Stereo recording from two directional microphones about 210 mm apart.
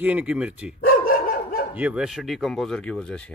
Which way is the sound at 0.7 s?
45° left (ahead or behind).